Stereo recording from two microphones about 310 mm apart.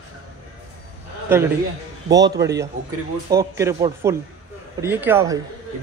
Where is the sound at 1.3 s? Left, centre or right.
Centre.